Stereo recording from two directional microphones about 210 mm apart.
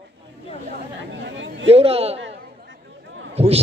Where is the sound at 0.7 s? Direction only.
55° right (ahead or behind).